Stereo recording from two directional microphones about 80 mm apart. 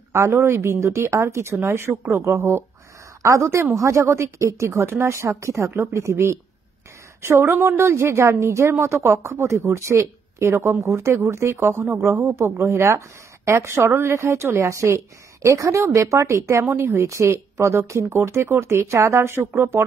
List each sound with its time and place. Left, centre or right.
0.1 s speech: right